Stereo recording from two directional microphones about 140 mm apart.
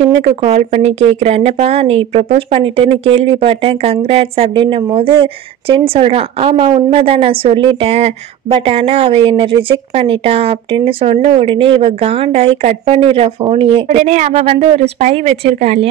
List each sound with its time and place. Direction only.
0.0 s speech: 45° right (ahead or behind)
13.8 s speech: 55° right (ahead or behind)